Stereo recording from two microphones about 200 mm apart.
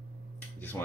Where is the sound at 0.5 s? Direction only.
10° left (ahead or behind).